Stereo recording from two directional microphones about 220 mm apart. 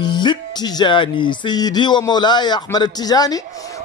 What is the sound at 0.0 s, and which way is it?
A man's voice, 20° left (ahead or behind).